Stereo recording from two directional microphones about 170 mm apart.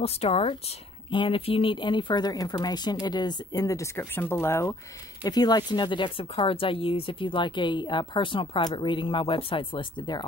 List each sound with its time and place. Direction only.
0.0 s speech: 35° left (ahead or behind)